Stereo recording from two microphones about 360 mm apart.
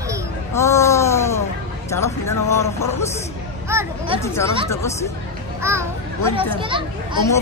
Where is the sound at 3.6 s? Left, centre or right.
Centre.